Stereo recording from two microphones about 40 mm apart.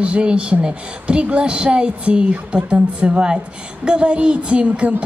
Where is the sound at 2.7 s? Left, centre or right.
Right.